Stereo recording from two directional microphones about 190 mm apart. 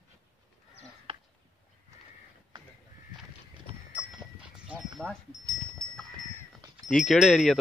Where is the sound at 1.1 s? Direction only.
30° right (ahead or behind).